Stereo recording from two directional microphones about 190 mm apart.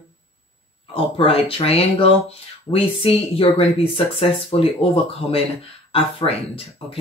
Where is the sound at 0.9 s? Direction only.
30° left (ahead or behind).